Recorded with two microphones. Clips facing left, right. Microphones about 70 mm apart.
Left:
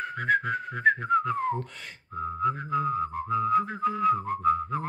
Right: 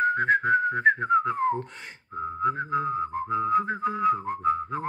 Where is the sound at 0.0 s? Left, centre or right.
Right.